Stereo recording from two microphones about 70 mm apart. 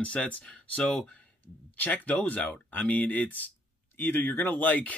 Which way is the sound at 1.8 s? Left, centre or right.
Left.